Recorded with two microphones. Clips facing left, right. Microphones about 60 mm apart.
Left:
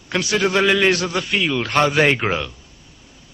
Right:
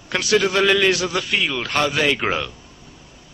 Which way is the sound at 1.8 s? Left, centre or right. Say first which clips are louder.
Left 3 dB; left.